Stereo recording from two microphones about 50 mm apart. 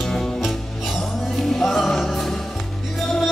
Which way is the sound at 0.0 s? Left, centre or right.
Centre.